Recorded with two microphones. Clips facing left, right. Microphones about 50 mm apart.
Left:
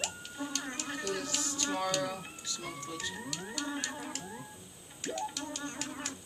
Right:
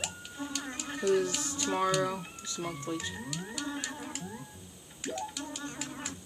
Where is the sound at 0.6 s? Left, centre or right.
Centre.